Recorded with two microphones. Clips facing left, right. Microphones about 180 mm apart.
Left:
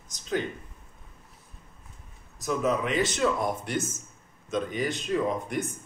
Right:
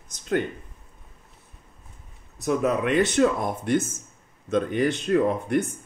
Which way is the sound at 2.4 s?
60° right (ahead or behind).